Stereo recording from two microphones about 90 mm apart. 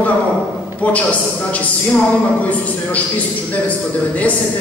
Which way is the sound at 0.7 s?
15° left (ahead or behind).